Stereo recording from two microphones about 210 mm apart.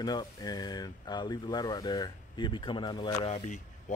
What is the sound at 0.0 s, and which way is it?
Speech, 20° left (ahead or behind).